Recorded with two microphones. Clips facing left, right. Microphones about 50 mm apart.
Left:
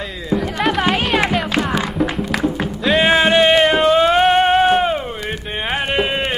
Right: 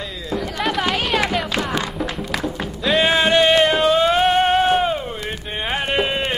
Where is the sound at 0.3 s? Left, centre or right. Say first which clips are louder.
Left 4 dB; centre.